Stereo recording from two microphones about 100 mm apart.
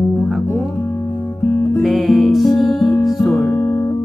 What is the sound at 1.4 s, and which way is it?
Music, 25° left (ahead or behind).